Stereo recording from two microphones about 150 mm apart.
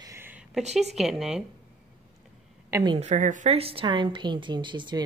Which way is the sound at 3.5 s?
40° right (ahead or behind).